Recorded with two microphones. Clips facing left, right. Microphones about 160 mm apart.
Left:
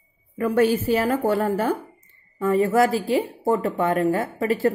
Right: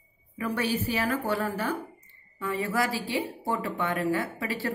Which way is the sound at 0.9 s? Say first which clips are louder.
Left 7 dB; 45° left (ahead or behind).